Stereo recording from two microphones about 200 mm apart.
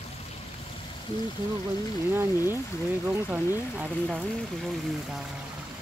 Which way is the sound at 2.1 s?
10° right (ahead or behind).